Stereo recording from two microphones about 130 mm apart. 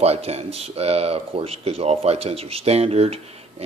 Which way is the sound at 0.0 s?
50° right (ahead or behind).